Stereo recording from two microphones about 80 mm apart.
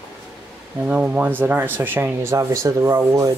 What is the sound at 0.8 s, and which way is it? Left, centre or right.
Speech, centre.